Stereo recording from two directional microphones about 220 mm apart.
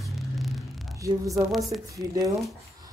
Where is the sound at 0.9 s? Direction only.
15° right (ahead or behind).